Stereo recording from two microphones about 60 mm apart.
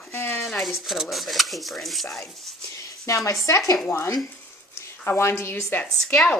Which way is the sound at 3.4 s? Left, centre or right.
Left.